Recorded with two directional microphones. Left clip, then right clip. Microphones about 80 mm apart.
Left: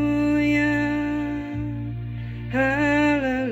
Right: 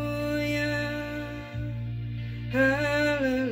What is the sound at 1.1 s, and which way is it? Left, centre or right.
Music, left.